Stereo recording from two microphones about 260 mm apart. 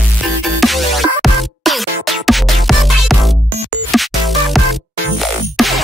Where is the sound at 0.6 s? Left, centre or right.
Centre.